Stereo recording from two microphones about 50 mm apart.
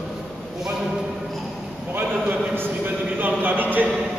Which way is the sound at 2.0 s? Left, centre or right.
Right.